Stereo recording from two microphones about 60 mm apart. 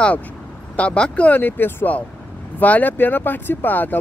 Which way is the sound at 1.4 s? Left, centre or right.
Left.